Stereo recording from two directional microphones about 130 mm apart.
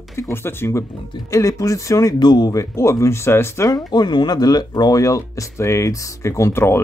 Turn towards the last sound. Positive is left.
turn(degrees=20)  # may be behind; listen again after turning